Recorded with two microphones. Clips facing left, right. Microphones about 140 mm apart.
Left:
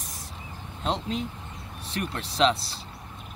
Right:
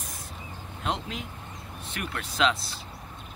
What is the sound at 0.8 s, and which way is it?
Speech, 35° left (ahead or behind).